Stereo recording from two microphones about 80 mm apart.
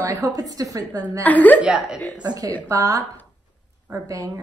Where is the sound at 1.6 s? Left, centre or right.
Centre.